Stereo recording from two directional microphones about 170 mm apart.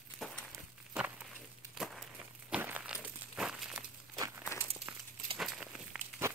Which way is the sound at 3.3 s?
5° right (ahead or behind).